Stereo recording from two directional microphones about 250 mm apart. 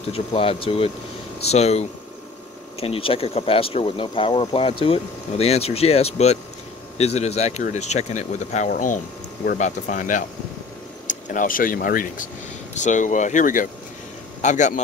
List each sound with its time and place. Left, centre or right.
0.1 s speech: left